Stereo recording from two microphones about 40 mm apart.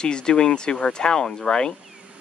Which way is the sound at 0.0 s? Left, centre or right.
Left.